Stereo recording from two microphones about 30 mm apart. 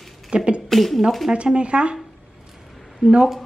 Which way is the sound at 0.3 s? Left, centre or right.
Right.